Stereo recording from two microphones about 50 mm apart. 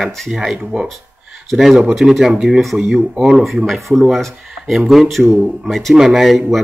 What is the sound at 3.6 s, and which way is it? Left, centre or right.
Speech, centre.